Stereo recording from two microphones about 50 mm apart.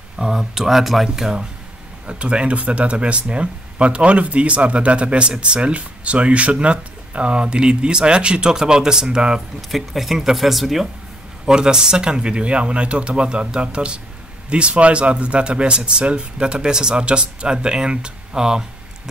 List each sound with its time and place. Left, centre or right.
0.2 s speech: centre
2.0 s speech: right
9.6 s speech: centre
11.4 s speech: centre